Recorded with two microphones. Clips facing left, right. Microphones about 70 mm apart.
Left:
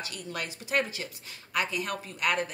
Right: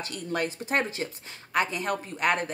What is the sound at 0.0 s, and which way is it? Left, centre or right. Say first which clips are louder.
Speech: right 6 dB; right.